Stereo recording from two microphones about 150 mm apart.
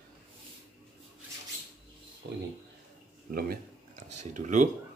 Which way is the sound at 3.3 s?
80° right.